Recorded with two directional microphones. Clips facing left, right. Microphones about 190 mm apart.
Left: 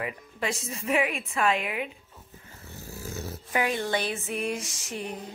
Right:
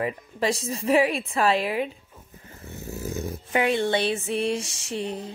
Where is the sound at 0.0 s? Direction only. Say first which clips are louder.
Right 6 dB; 35° right (ahead or behind).